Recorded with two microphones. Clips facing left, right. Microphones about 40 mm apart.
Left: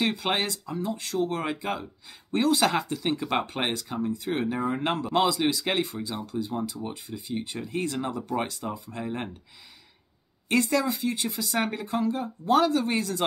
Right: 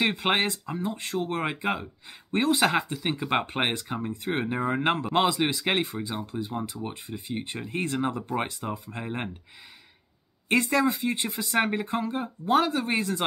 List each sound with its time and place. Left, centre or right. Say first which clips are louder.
0.0 s speech: right 2 dB; right
3.4 s speech: right 2 dB; right
10.5 s speech: right 1 dB; right
12.4 s speech: left 1 dB; centre